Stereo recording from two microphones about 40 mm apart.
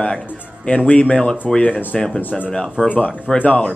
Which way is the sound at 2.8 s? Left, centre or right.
Left.